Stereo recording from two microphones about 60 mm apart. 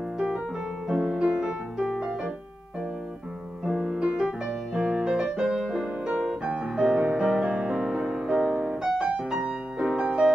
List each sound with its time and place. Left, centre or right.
0.8 s music: centre
3.6 s music: centre
4.2 s music: centre